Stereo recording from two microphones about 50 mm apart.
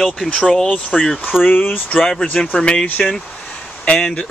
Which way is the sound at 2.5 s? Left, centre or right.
Left.